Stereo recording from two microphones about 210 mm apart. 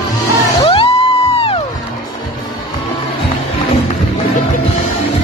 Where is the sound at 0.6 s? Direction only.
25° left (ahead or behind).